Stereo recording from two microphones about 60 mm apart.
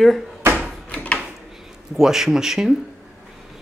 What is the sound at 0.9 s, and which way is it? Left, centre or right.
Drawer open or close, centre.